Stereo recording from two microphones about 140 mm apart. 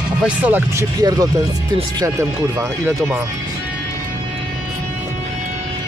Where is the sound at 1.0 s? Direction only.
30° right (ahead or behind).